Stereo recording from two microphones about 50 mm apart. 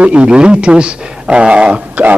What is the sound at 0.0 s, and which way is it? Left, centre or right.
A man's voice, right.